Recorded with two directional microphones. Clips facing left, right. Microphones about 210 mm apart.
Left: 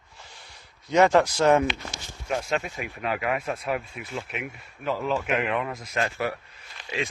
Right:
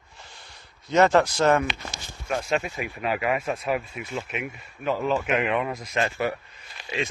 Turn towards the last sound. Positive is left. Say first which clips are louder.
# right 1 dB
turn(degrees=0)  # may be behind; listen again after turning